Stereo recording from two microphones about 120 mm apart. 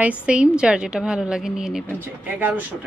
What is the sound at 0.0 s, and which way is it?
A woman's voice, 10° right (ahead or behind).